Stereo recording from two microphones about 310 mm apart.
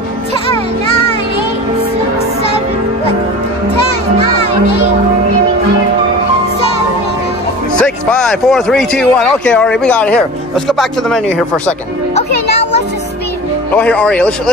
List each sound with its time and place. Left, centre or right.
0.3 s music: centre
7.8 s speech: centre
13.7 s speech: centre